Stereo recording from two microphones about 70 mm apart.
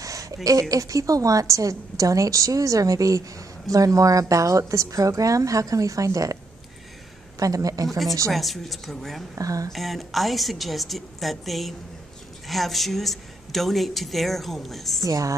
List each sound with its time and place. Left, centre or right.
0.0 s a woman's voice: right
7.3 s a man's voice: right
8.3 s a woman's voice: centre
9.3 s a man's voice: right
9.7 s a woman's voice: centre
15.0 s a woman's voice: right